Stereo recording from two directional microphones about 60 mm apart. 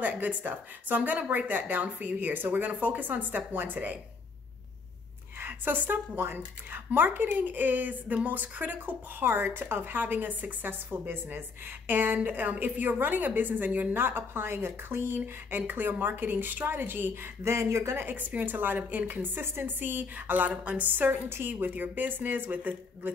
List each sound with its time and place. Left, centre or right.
0.0 s speech: right
5.4 s speech: right
17.4 s speech: right
18.0 s speech: right